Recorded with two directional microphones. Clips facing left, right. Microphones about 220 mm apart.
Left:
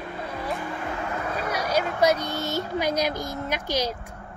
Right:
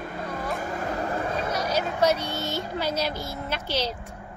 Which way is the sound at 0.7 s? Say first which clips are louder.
Right 2 dB; 40° right (ahead or behind).